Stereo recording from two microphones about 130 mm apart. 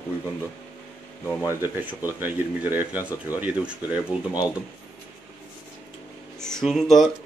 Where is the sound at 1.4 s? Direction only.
15° right (ahead or behind).